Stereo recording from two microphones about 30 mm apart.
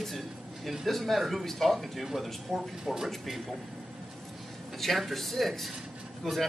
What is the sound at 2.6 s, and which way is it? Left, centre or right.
Speech, centre.